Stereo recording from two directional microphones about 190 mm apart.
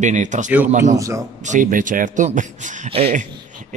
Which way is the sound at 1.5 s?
45° right (ahead or behind).